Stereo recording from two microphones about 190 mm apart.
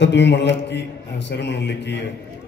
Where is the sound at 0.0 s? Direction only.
65° left (ahead or behind).